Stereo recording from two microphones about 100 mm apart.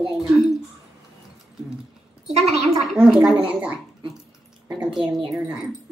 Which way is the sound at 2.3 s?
90° right.